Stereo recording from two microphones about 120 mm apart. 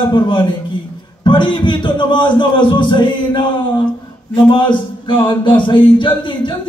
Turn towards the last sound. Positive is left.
turn(degrees=45)  # may be behind; listen again after turning